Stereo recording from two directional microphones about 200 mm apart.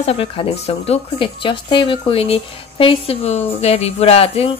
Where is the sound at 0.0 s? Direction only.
30° left (ahead or behind).